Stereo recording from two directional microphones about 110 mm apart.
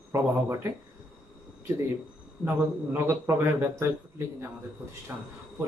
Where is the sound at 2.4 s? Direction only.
25° right (ahead or behind).